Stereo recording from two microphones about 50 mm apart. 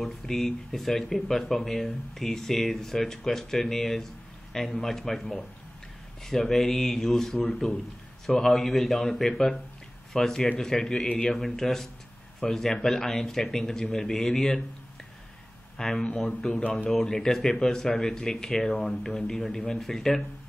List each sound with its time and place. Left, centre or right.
0.0 s speech: centre
11.3 s speech: centre
15.8 s speech: centre